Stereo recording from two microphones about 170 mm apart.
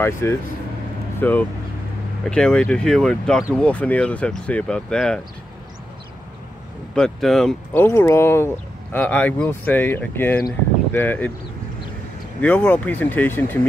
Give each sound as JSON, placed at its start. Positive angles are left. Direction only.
{"t": 0.0, "sound": "speech", "side_deg": 15}
{"t": 7.0, "sound": "speech", "side_deg": 0}
{"t": 7.8, "sound": "speech", "side_deg": 15}
{"t": 12.4, "sound": "speech", "side_deg": 10}